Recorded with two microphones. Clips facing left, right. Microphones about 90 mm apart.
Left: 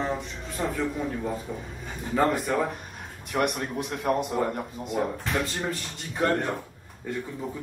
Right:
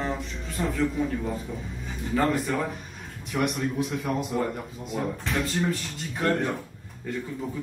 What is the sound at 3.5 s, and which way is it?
Speech, 55° left (ahead or behind).